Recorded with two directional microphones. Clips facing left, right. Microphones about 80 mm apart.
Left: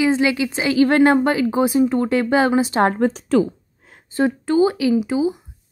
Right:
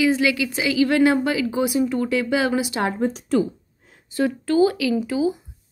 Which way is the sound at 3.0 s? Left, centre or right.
Left.